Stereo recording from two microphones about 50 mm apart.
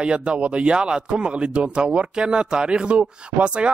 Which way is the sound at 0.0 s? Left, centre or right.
Centre.